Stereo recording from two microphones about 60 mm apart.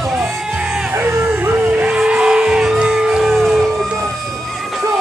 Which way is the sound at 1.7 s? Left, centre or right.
Centre.